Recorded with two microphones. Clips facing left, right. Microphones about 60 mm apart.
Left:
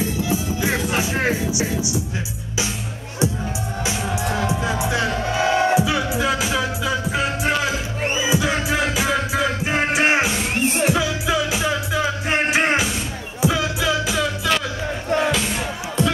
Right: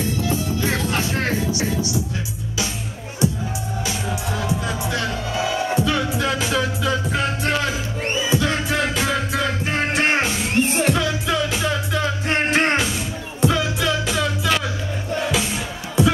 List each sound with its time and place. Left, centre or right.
0.2 s music: centre
4.5 s music: left
5.4 s music: left
5.8 s music: centre
16.0 s music: centre